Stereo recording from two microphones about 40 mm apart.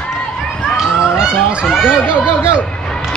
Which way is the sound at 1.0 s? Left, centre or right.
Right.